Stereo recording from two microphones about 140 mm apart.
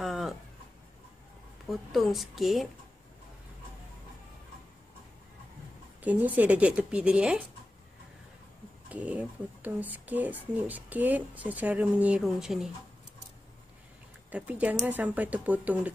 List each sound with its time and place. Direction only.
0.0 s a sound: centre (ahead or behind)
1.7 s a woman's voice: centre (ahead or behind)
6.0 s speech: 10° right (ahead or behind)
8.8 s speech: 10° right (ahead or behind)
14.3 s speech: 10° right (ahead or behind)